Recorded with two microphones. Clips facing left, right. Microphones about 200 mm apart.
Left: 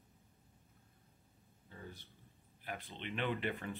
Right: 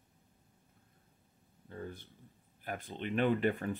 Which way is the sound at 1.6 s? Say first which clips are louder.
Right 8 dB; 50° right (ahead or behind).